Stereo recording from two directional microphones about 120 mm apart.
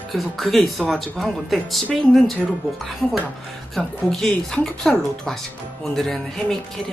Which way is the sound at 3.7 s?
5° left (ahead or behind).